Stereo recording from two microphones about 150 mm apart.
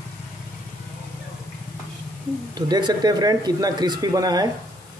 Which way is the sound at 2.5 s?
30° right (ahead or behind).